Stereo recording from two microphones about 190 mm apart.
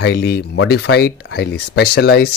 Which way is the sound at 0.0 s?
60° left (ahead or behind).